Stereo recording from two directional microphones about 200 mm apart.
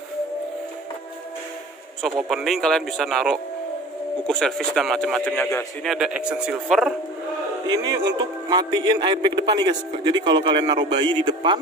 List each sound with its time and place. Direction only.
2.0 s speech: centre (ahead or behind)
5.9 s speech: 5° right (ahead or behind)
7.6 s a man's voice: 20° right (ahead or behind)